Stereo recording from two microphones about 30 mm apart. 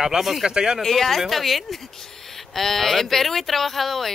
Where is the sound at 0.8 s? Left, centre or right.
Centre.